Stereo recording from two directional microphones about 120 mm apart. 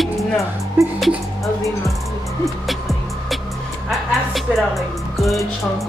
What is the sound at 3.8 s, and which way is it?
Speech, centre (ahead or behind).